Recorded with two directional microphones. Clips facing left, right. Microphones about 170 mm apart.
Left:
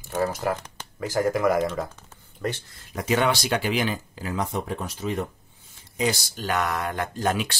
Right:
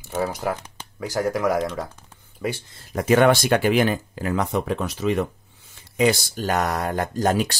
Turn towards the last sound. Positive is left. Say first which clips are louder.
# right 4 dB
turn(degrees=-40)  # may be behind; listen again after turning